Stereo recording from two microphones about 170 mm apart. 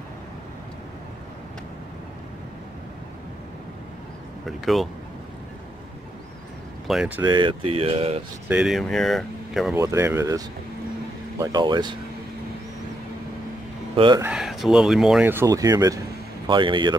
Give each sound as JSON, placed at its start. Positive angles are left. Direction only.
{"t": 4.5, "sound": "speech", "side_deg": 0}
{"t": 6.9, "sound": "speech", "side_deg": -5}
{"t": 7.2, "sound": "speech", "side_deg": -30}
{"t": 8.5, "sound": "speech", "side_deg": -5}
{"t": 9.8, "sound": "speech", "side_deg": -15}
{"t": 13.9, "sound": "speech", "side_deg": -30}
{"t": 14.2, "sound": "speech", "side_deg": -5}